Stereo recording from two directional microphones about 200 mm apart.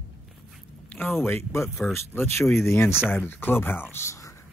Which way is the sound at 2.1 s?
10° left (ahead or behind).